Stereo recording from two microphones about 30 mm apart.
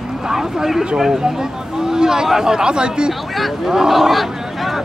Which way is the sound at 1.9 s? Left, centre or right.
Right.